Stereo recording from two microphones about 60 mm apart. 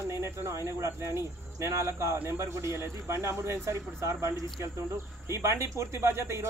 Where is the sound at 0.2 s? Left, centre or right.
Right.